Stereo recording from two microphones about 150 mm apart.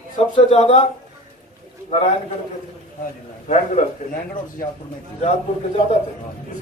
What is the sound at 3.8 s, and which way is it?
Speech, 55° left (ahead or behind).